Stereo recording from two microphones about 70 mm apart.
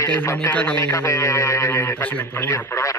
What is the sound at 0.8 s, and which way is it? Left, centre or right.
Speech, left.